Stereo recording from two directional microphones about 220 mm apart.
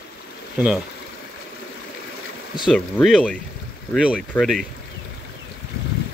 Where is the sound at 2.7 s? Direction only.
5° left (ahead or behind).